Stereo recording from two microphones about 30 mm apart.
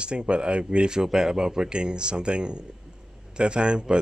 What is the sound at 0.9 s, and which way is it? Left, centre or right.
Speech, right.